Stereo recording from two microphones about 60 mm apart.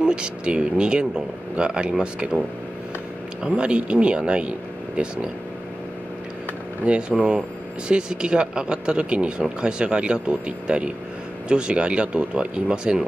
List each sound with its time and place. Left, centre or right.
0.0 s speech: centre
3.4 s speech: centre
6.9 s speech: centre